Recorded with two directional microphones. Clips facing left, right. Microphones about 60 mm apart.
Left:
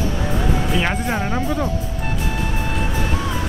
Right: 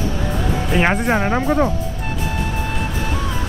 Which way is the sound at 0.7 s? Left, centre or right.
Right.